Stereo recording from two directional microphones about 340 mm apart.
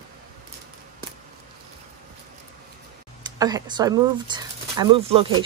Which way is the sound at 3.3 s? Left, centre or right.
Centre.